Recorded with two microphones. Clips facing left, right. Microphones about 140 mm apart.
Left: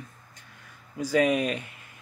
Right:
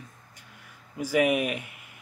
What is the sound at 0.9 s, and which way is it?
Speech, 10° right (ahead or behind).